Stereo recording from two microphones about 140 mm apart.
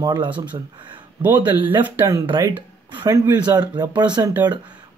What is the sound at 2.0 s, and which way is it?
Speech, 30° right (ahead or behind).